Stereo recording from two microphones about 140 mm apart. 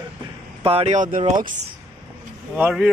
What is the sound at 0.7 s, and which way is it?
Speech, 45° right (ahead or behind).